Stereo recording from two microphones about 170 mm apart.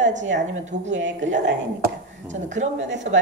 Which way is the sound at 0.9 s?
90° right.